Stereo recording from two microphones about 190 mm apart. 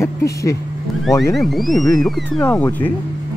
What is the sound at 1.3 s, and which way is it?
Speech, centre (ahead or behind).